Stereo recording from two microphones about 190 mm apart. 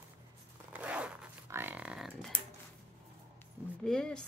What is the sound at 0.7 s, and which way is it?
Zipper, 5° right (ahead or behind).